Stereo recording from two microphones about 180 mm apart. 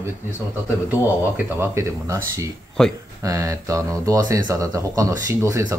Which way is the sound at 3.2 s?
20° right (ahead or behind).